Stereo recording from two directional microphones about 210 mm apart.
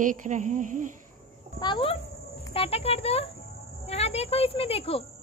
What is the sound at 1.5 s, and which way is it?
A child's voice, 20° left (ahead or behind).